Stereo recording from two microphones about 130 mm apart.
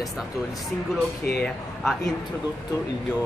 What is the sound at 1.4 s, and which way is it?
Speech, 5° left (ahead or behind).